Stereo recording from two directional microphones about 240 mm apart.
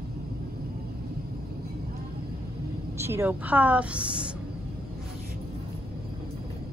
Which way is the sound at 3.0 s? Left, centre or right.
Centre.